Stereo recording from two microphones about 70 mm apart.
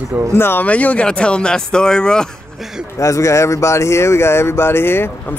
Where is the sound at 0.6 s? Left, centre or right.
Left.